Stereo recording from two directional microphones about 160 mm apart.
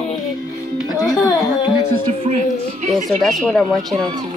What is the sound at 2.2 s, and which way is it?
Speech, 45° right (ahead or behind).